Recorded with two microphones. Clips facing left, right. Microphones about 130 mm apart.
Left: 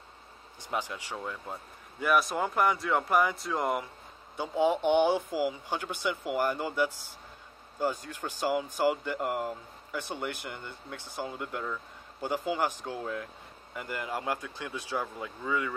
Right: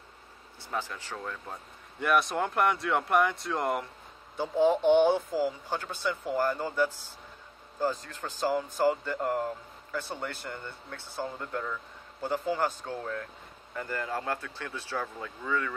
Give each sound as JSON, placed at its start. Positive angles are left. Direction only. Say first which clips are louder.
{"t": 0.6, "sound": "speech", "louder": "left 1 dB", "side_deg": 15}